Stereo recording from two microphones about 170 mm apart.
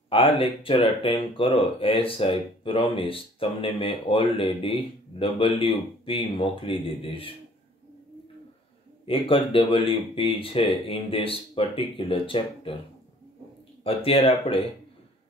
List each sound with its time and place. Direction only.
0.1 s speech: 30° left (ahead or behind)
9.0 s speech: 30° left (ahead or behind)
13.8 s speech: 35° left (ahead or behind)